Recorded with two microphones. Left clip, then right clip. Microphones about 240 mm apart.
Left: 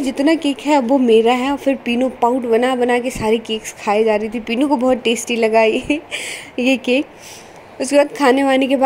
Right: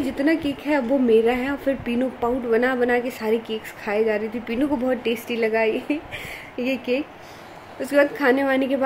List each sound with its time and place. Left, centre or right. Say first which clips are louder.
0.0 s a woman's voice: left 6 dB; centre